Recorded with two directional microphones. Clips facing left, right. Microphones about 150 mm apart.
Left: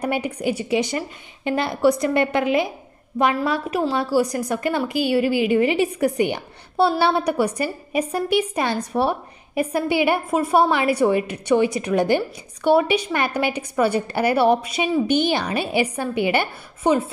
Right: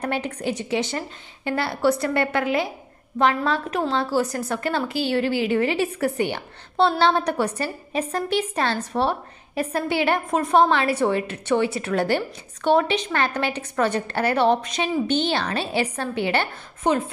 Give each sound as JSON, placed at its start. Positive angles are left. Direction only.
{"t": 0.0, "sound": "a woman's voice", "side_deg": 10}